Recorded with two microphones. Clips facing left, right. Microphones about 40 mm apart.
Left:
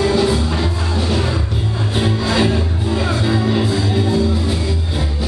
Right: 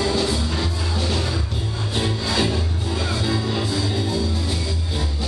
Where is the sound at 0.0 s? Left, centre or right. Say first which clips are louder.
Left 6 dB; centre.